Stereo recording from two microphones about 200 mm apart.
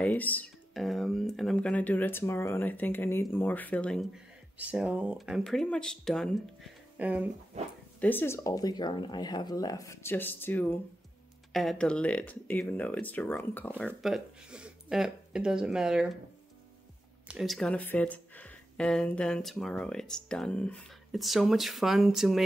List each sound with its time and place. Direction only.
0.0 s speech: 10° left (ahead or behind); by 7.2 s 5° right (ahead or behind)
7.5 s speech: 35° right (ahead or behind)
8.0 s speech: 10° left (ahead or behind)
17.3 s speech: centre (ahead or behind)